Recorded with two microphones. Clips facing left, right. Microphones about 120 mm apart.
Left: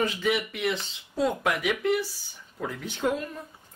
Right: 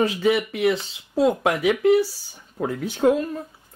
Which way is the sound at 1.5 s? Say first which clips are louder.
Right 7 dB; 35° right (ahead or behind).